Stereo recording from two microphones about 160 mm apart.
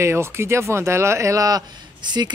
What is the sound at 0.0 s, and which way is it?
A woman's voice, 15° right (ahead or behind).